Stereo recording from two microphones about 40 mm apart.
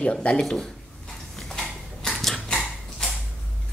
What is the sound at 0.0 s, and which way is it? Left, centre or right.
Speech, left.